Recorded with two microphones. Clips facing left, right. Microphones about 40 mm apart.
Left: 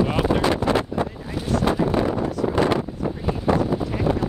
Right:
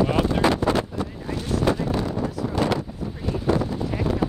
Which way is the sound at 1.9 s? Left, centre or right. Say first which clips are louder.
Left 4 dB; left.